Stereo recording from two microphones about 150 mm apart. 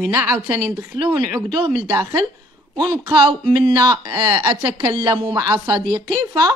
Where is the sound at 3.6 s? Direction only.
30° right (ahead or behind).